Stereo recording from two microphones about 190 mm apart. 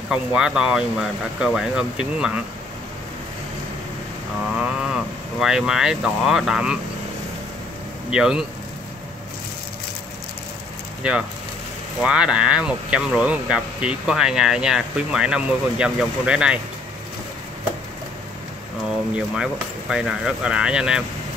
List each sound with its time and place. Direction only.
0.1 s speech: 5° right (ahead or behind)
4.6 s speech: 5° right (ahead or behind)
8.1 s speech: 5° right (ahead or behind)
11.0 s speech: 5° right (ahead or behind)
19.1 s speech: 5° right (ahead or behind)